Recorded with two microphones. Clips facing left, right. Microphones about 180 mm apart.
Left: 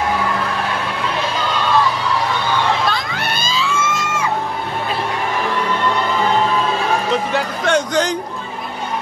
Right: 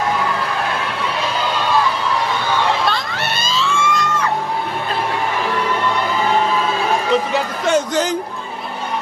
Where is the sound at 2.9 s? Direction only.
Centre (ahead or behind).